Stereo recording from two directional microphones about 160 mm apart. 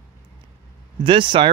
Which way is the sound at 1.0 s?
30° right (ahead or behind).